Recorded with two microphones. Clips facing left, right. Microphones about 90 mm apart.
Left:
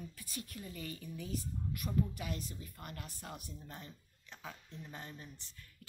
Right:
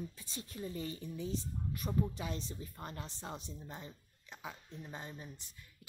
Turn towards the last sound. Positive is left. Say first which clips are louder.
# right 2 dB
turn(degrees=-15)  # may be behind; listen again after turning